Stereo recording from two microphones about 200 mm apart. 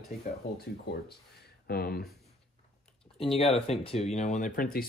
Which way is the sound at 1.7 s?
50° left (ahead or behind).